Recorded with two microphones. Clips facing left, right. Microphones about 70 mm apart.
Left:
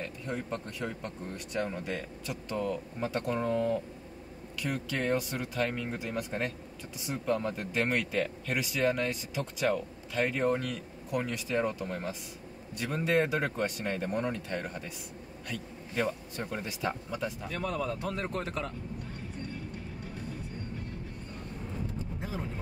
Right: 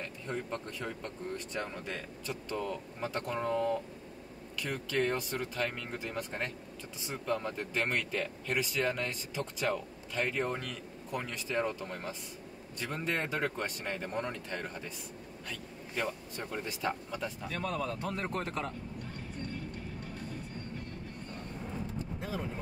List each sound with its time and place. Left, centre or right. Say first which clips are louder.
0.0 s a man's voice: left 2 dB; centre
18.0 s speech: left 1 dB; right